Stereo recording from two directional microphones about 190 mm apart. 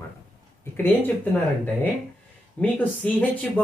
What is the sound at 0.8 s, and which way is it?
Speech, 10° left (ahead or behind).